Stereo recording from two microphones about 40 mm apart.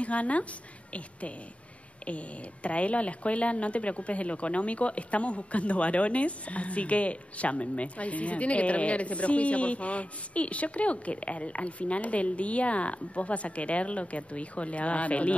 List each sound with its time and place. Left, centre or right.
0.0 s a woman's voice: left
2.0 s a woman's voice: left